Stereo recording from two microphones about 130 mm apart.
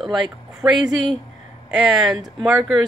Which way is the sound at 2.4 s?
5° right (ahead or behind).